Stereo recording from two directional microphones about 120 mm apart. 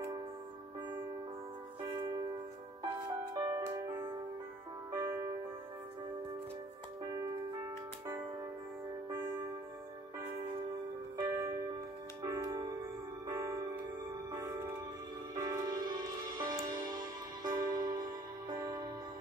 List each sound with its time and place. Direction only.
2.0 s music: 35° right (ahead or behind)
3.3 s music: 30° right (ahead or behind)
4.9 s music: 35° right (ahead or behind)
9.1 s music: 35° right (ahead or behind)
11.2 s music: 30° right (ahead or behind)